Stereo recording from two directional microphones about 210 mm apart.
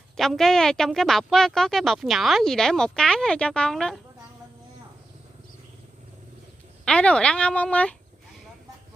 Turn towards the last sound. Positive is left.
turn(degrees=5)  # may be behind; listen again after turning